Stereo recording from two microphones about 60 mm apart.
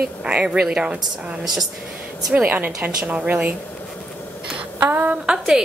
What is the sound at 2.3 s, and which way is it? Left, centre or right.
A woman's voice, right.